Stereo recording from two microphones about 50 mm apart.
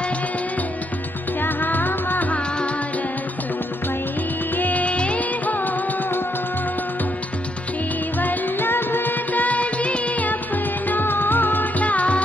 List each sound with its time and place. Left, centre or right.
1.4 s music: left
4.6 s music: left
8.2 s music: left